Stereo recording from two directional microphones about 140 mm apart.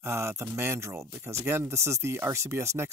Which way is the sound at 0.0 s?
20° right (ahead or behind).